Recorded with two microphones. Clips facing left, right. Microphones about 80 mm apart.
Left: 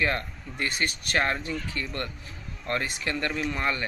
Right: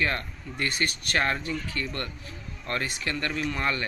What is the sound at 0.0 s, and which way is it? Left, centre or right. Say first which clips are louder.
Speech: left 1 dB; centre.